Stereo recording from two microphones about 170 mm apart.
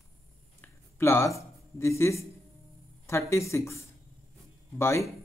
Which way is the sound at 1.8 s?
15° left (ahead or behind).